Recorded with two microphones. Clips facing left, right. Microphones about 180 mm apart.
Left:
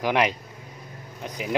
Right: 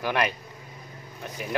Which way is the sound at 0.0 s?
15° left (ahead or behind).